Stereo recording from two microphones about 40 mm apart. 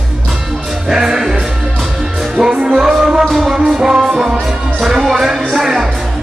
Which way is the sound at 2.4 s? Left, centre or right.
Centre.